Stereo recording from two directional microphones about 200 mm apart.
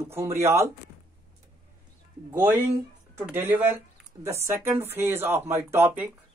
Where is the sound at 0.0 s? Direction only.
15° right (ahead or behind).